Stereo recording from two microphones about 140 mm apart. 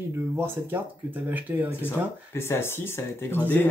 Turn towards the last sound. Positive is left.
turn(degrees=15)  # may be behind; listen again after turning